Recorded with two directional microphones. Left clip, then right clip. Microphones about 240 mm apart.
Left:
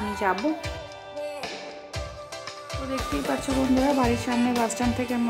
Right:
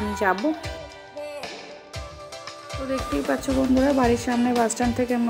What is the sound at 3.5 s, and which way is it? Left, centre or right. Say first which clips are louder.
Speech: right 2 dB; centre.